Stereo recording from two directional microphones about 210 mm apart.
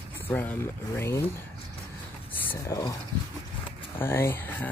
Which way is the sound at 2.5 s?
15° left (ahead or behind).